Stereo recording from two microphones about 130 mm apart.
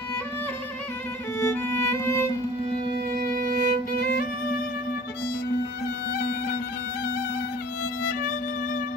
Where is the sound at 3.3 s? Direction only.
90° right.